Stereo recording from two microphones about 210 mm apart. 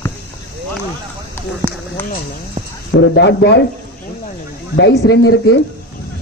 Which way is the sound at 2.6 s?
40° right (ahead or behind).